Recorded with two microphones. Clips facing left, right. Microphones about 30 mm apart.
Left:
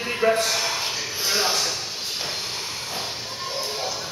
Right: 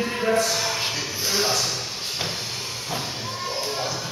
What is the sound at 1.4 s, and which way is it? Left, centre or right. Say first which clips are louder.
Speech: right 1 dB; left.